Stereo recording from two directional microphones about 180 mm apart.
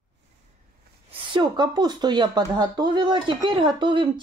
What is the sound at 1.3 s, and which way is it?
Speech, 25° right (ahead or behind).